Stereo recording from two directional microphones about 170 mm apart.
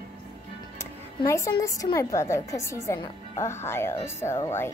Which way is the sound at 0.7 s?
15° left (ahead or behind).